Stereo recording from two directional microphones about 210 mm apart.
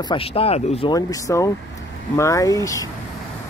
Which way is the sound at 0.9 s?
15° left (ahead or behind).